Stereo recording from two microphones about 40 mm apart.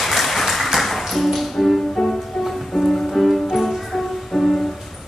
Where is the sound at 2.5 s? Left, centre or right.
Centre.